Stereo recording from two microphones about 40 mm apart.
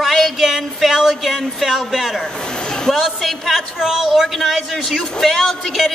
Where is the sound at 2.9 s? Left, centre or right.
Centre.